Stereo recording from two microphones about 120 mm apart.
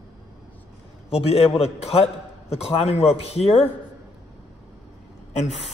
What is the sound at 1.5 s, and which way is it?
A man's voice, 60° left (ahead or behind).